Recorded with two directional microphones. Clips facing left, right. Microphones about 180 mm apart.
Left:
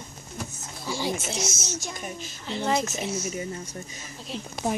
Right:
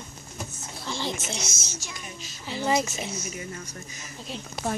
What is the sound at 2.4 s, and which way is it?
Speech, 5° right (ahead or behind).